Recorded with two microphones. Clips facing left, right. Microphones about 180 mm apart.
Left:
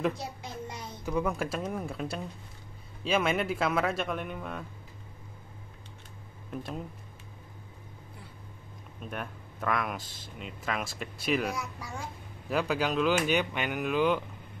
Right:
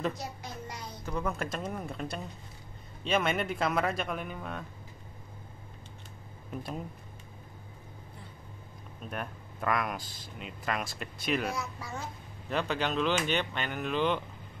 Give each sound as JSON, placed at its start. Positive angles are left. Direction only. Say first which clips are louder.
{"t": 0.2, "sound": "a sound", "louder": "left 2 dB", "side_deg": 25}
{"t": 1.1, "sound": "speech", "louder": "left 3 dB", "side_deg": 10}
{"t": 6.5, "sound": "speech", "louder": "left 1 dB", "side_deg": 0}
{"t": 9.0, "sound": "speech", "louder": "even", "side_deg": 0}